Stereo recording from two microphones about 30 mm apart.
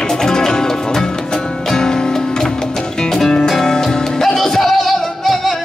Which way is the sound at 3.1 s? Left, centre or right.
Centre.